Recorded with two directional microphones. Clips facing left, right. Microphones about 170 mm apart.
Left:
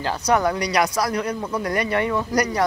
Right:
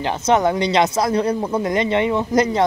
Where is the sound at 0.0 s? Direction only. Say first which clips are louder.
Right 3 dB; 20° right (ahead or behind).